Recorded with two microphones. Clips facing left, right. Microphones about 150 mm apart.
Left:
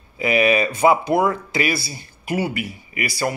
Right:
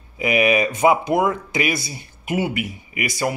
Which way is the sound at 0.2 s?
15° right (ahead or behind).